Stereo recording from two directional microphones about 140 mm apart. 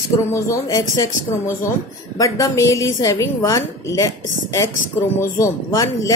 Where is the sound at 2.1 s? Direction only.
25° left (ahead or behind).